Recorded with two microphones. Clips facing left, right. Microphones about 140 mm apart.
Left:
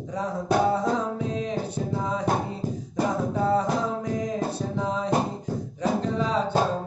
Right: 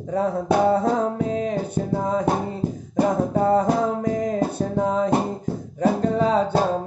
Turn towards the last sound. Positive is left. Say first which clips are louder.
# right 5 dB
turn(degrees=-50)  # may be behind; listen again after turning